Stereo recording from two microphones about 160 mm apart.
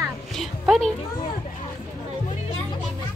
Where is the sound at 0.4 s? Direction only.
Centre (ahead or behind).